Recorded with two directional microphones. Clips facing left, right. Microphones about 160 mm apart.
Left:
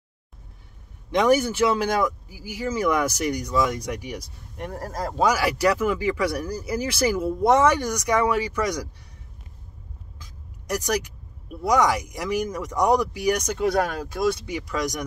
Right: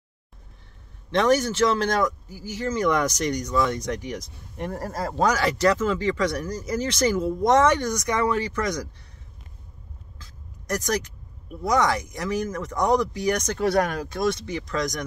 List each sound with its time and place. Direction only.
1.1 s speech: 10° left (ahead or behind); by 5.2 s 5° right (ahead or behind)
5.2 s speech: 10° left (ahead or behind)
10.1 s a sound: 10° left (ahead or behind)
11.6 s speech: 10° left (ahead or behind)